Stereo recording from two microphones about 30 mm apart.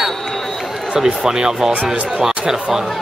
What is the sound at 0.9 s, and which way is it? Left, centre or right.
Speech, right.